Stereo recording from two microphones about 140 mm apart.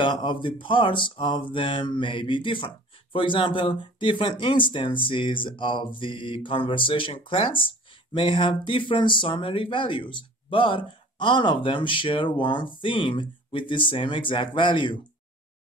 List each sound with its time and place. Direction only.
0.0 s speech: 35° left (ahead or behind)